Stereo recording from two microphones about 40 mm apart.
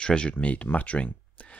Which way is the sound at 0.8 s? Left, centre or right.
Left.